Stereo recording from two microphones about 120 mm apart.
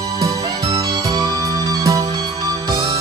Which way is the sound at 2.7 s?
40° right (ahead or behind).